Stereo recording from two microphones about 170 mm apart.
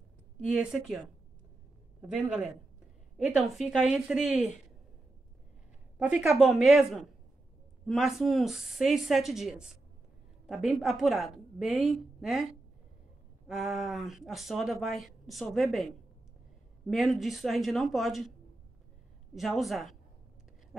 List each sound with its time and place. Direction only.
0.4 s speech: 5° right (ahead or behind)
5.9 s speech: 5° right (ahead or behind)
13.5 s speech: centre (ahead or behind)
19.3 s speech: centre (ahead or behind)